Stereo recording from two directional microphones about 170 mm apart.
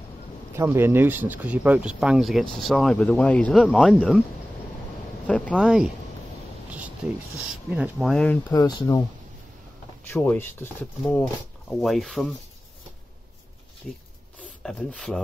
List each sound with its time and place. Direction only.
0.6 s speech: 15° right (ahead or behind)
5.2 s speech: 5° left (ahead or behind)
7.3 s speech: 5° right (ahead or behind)
8.1 s speech: 5° left (ahead or behind)
8.5 s speech: 25° left (ahead or behind)
10.1 s speech: 10° left (ahead or behind)
11.8 s speech: centre (ahead or behind)
14.6 s speech: 5° left (ahead or behind)